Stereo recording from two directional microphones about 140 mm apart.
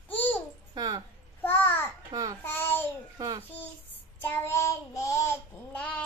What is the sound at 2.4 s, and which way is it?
Speech, 15° left (ahead or behind).